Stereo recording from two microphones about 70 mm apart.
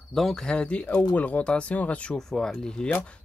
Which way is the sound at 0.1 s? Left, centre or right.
Centre.